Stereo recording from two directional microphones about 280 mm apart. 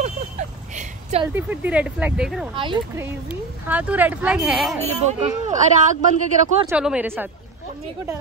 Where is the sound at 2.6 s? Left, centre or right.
Centre.